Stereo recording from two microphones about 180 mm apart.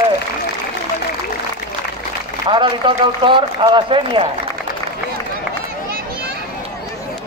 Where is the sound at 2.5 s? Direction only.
30° right (ahead or behind).